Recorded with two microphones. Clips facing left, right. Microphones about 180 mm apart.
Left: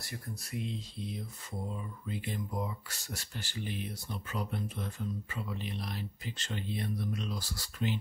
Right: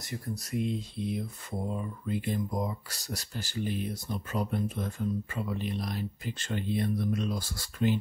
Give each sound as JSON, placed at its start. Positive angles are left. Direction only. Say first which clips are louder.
{"t": 0.3, "sound": "speech", "louder": "right 8 dB", "side_deg": -40}